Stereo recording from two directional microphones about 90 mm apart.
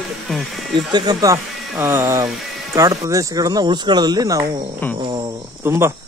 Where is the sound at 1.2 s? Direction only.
30° right (ahead or behind).